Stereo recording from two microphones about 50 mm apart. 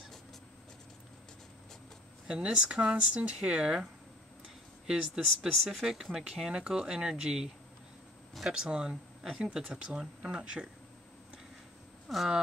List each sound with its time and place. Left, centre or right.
2.2 s speech: centre
4.8 s speech: centre
5.5 s speech: centre
8.5 s speech: centre
12.1 s speech: centre